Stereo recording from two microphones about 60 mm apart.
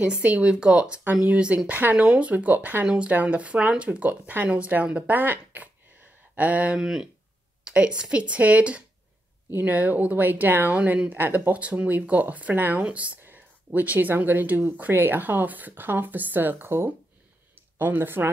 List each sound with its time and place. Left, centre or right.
0.0 s speech: centre
2.0 s speech: centre
6.8 s speech: centre; by 18.3 s right